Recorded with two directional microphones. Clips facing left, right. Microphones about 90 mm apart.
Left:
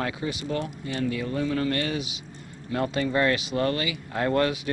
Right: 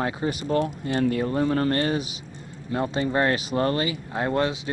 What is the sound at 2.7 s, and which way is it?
Speech, 30° right (ahead or behind).